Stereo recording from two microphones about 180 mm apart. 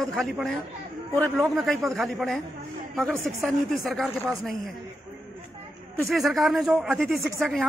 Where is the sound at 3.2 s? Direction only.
15° right (ahead or behind).